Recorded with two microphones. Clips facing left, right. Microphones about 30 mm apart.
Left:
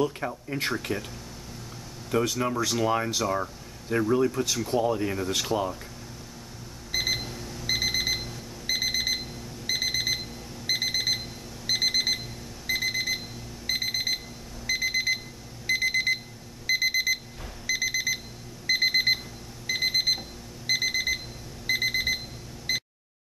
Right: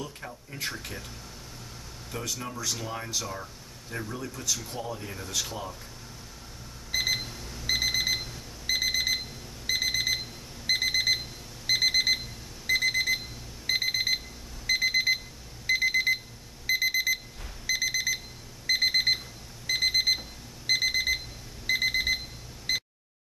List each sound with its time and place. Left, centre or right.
0.2 s speech: left
0.9 s speech: centre
2.4 s speech: left
6.9 s alarm clock: centre
15.6 s alarm: centre
16.6 s alarm clock: centre
22.7 s a sound: centre